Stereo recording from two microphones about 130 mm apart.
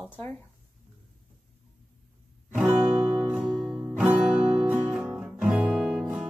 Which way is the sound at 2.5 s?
15° right (ahead or behind).